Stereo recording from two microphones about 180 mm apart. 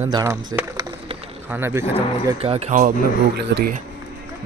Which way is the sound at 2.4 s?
35° right (ahead or behind).